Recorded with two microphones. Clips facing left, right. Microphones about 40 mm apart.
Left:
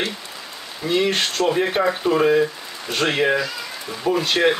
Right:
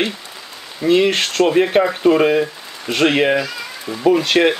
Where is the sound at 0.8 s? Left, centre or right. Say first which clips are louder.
Right 5 dB; right.